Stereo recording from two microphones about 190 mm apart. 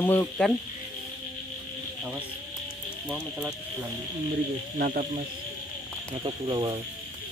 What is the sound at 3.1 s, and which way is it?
Speech, 10° right (ahead or behind).